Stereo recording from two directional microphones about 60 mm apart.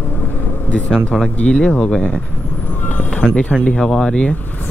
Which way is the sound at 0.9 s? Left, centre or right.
Centre.